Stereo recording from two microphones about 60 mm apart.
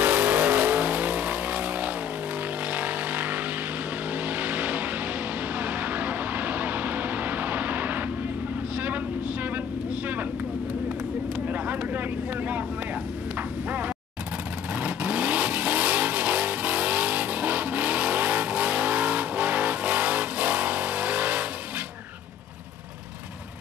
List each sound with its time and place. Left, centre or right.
0.0 s vehicle: right
11.3 s vehicle: right
13.7 s a sound: right
14.7 s vehicle: right